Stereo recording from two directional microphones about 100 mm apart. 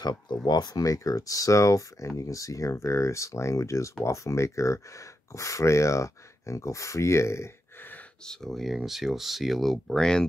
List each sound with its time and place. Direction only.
0.0 s speech: 45° left (ahead or behind); by 7.4 s 30° left (ahead or behind)
8.3 s speech: centre (ahead or behind)